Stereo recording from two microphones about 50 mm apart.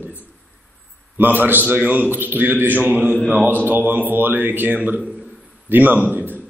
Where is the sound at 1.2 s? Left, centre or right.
Right.